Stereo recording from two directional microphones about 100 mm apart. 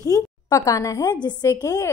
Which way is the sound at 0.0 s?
35° left (ahead or behind).